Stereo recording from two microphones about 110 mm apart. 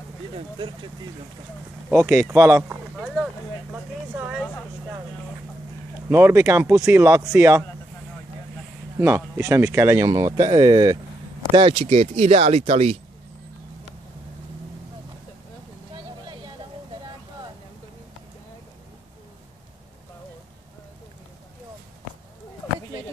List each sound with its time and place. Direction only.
2.0 s speech: 25° right (ahead or behind)
3.7 s speech: 15° right (ahead or behind)
4.4 s speech: 15° left (ahead or behind)
6.0 s speech: 25° right (ahead or behind)
9.0 s speech: 25° right (ahead or behind); by 13.0 s 65° right (ahead or behind)
15.9 s vehicle: 40° right (ahead or behind)